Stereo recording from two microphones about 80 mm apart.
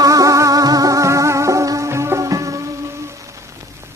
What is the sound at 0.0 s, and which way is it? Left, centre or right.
Music, right.